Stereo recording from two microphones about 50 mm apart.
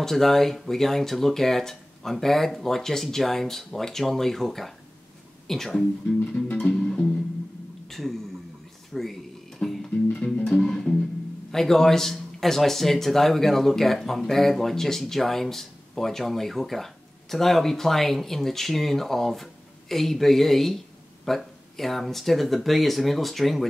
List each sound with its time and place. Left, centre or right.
0.0 s a man's voice: centre
6.2 s music: left
7.9 s speech: centre
8.9 s a sound: centre
9.6 s music: centre
10.1 s music: left
10.6 s music: centre
11.5 s a man's voice: centre